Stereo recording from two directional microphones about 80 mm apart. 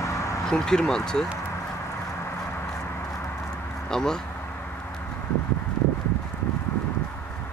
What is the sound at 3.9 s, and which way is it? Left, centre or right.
Speech, centre.